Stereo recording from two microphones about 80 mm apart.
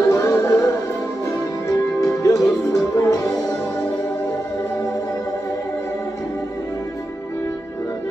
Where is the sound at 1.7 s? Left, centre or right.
Left.